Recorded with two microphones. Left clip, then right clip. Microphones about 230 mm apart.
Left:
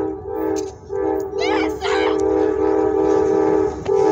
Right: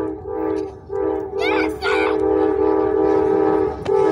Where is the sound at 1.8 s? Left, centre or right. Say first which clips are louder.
Even; right.